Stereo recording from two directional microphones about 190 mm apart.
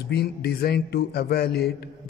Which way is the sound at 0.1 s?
60° left (ahead or behind).